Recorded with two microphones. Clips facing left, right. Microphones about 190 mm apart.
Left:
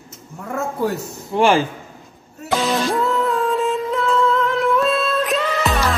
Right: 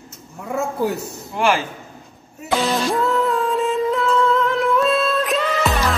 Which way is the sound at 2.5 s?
Centre (ahead or behind).